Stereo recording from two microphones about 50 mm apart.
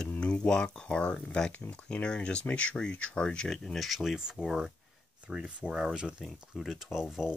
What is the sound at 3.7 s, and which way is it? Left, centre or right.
Speech, centre.